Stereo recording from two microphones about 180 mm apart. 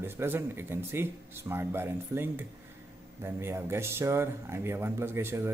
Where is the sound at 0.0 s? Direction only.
10° right (ahead or behind).